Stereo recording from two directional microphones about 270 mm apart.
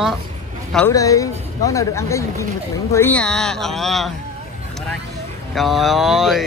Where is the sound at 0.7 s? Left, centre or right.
Centre.